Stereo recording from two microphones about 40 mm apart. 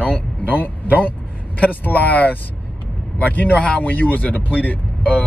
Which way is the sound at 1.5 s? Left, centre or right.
Left.